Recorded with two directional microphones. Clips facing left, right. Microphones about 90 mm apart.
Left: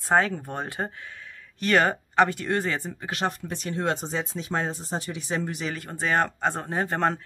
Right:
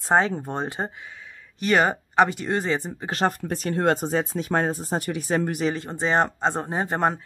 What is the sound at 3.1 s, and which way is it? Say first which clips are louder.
Speech: right 5 dB; 40° right (ahead or behind).